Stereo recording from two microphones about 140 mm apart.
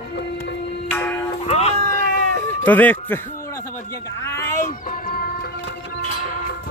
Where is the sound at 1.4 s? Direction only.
50° left (ahead or behind).